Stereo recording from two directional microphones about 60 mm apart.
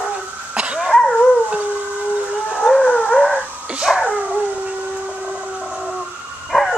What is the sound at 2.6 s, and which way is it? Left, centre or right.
Howl, centre.